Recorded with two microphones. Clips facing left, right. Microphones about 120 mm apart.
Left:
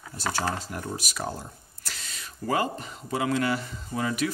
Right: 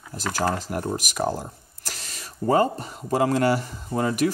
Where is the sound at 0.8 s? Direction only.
40° right (ahead or behind).